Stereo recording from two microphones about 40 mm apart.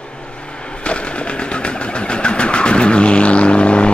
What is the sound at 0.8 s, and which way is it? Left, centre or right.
Sewing machine, left.